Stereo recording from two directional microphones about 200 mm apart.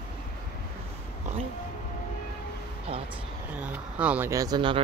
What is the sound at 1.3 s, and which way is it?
Music, 35° right (ahead or behind).